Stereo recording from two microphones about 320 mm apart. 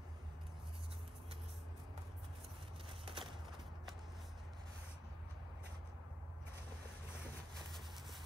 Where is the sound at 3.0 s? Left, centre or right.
Centre.